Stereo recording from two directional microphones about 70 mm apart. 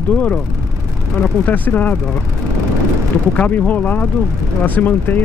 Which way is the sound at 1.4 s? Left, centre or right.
Left.